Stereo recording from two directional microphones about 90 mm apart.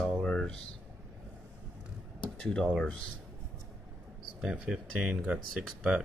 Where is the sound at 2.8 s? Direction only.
15° left (ahead or behind).